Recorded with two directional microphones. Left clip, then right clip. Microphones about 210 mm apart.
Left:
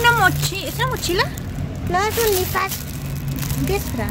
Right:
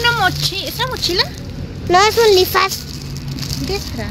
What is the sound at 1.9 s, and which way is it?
Speech, 45° right (ahead or behind).